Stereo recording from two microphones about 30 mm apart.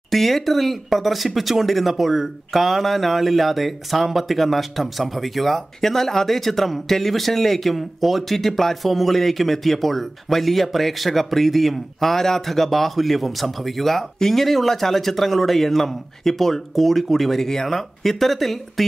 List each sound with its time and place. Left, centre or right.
0.1 s speech: centre
17.4 s speech: centre
17.6 s speech: centre